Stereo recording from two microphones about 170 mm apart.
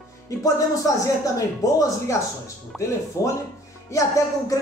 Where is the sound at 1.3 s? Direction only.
20° left (ahead or behind).